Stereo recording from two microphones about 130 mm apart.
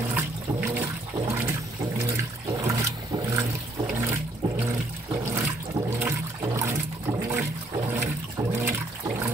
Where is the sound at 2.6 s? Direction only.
25° right (ahead or behind).